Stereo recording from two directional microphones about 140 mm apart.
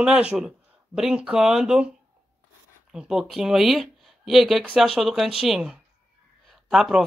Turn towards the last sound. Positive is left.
turn(degrees=-5)  # may be behind; listen again after turning